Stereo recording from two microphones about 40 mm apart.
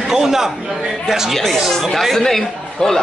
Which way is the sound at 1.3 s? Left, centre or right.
Centre.